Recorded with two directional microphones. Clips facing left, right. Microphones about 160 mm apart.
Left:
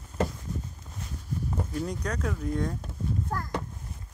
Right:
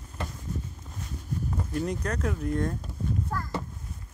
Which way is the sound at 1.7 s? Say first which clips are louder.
Right 4 dB; 5° right (ahead or behind).